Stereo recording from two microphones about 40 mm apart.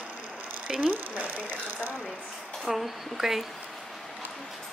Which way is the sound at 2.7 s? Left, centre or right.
Centre.